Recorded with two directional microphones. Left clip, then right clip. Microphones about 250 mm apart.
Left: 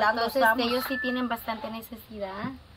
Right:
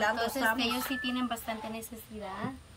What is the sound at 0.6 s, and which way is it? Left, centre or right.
A woman's voice, centre.